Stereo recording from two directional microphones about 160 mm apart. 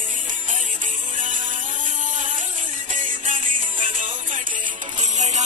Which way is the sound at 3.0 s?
55° right (ahead or behind).